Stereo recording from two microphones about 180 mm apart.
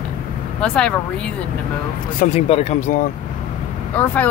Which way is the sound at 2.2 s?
35° left (ahead or behind).